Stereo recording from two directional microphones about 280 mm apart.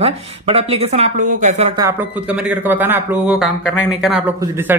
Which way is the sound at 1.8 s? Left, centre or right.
Centre.